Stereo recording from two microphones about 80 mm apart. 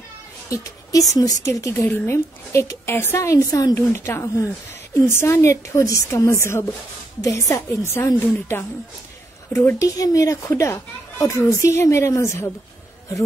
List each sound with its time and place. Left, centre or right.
0.5 s speech: left
1.7 s speech: left
3.3 s speech: left
9.8 s speech: left